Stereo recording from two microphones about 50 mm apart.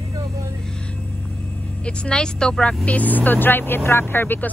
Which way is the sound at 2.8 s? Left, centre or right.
Left.